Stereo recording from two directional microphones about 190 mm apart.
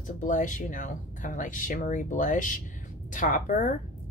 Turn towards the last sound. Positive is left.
turn(degrees=45)  # may be behind; listen again after turning